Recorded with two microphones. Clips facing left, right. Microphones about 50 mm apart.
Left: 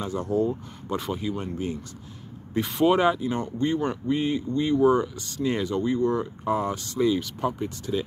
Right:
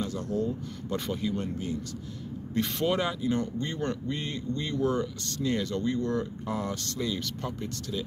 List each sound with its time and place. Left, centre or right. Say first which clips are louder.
0.0 s speech: left 3 dB; left
0.9 s speech: left 2 dB; centre